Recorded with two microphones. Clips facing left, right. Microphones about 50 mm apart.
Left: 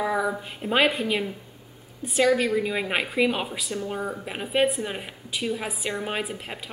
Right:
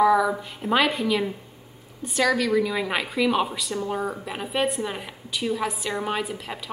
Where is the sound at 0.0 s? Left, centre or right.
Left.